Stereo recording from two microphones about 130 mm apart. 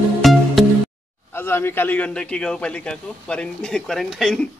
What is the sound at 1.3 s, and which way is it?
A man's voice, 15° left (ahead or behind).